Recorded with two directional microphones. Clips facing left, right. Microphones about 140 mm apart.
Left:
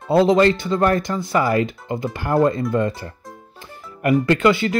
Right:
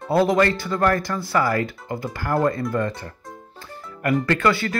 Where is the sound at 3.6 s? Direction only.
20° left (ahead or behind).